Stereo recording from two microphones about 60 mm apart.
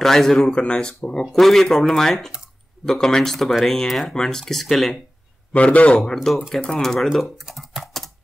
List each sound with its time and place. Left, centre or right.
0.0 s speech: centre
0.5 s speech: centre
5.5 s a man's voice: left
6.5 s speech: centre
7.2 s speech: centre
7.7 s typing: centre